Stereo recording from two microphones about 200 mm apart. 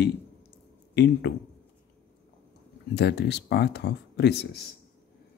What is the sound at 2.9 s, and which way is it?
Speech, 55° left (ahead or behind).